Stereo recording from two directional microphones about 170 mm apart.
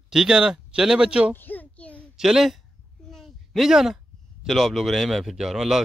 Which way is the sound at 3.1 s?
Centre (ahead or behind).